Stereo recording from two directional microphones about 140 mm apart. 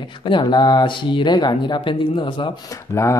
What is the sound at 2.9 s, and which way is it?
Speech, 20° left (ahead or behind).